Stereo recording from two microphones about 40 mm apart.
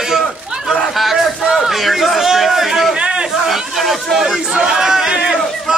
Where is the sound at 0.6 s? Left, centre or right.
Centre.